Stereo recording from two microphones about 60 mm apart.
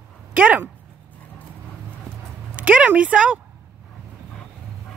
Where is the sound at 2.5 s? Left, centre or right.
Right.